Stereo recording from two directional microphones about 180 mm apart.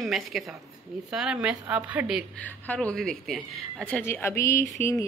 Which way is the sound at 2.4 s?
10° left (ahead or behind).